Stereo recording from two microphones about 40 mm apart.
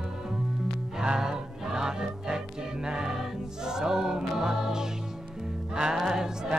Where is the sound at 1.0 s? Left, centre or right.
Centre.